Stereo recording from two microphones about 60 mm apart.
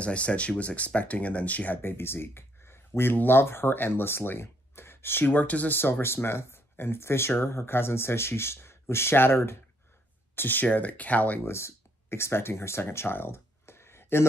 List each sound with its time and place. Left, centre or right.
0.0 s speech: left
1.8 s speech: left
5.8 s speech: left
10.3 s speech: left
11.4 s speech: left